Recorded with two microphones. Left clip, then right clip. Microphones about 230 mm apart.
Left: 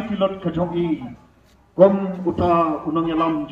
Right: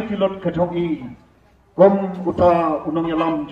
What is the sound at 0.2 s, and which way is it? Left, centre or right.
Speech, centre.